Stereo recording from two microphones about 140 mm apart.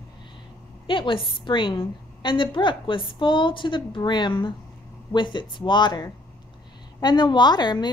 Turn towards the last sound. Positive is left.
turn(degrees=30)  # may be behind; listen again after turning